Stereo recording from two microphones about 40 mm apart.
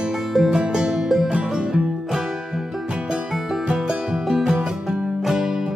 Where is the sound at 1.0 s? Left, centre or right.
Centre.